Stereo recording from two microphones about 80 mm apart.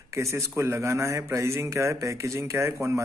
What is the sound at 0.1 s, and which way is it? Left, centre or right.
A man's voice, right.